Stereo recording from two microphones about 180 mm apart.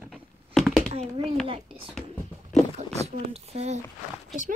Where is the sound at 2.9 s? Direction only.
35° right (ahead or behind).